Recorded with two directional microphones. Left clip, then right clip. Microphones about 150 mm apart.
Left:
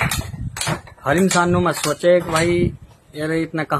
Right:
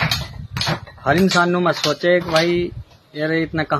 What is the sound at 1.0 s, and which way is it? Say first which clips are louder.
Speech: right 1 dB; centre (ahead or behind).